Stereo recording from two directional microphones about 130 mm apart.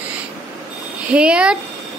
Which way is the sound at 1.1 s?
10° right (ahead or behind).